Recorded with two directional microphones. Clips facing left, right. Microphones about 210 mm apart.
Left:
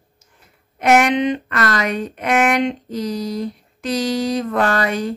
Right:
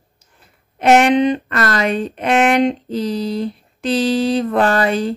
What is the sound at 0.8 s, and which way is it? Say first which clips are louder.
Speech: right 3 dB; 30° right (ahead or behind).